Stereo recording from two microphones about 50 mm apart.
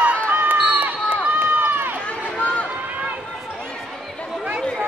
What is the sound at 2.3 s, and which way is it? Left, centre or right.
Run, left.